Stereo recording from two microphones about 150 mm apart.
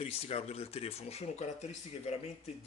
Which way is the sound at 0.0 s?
40° left (ahead or behind).